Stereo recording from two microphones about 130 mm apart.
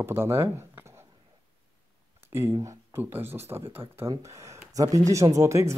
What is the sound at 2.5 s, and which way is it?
Speech, 25° right (ahead or behind).